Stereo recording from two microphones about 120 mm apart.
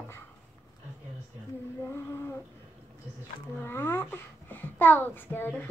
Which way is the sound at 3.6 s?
20° left (ahead or behind).